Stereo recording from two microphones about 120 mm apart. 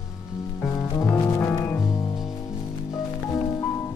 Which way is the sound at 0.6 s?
25° left (ahead or behind).